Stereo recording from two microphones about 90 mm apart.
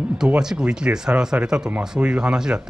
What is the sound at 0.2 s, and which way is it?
Speech, 5° right (ahead or behind).